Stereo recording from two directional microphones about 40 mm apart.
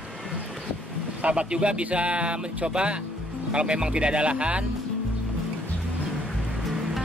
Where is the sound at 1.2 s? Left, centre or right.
Right.